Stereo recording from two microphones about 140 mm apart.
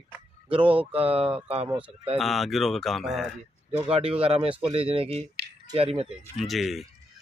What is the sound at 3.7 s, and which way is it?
Speech, 40° right (ahead or behind).